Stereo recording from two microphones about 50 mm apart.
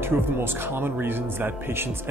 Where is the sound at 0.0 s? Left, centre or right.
Right.